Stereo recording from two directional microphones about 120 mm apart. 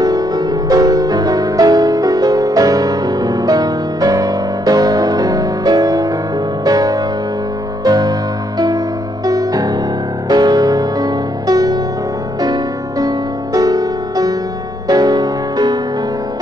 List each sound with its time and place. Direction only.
0.0 s music: 30° right (ahead or behind)
13.0 s music: 30° right (ahead or behind)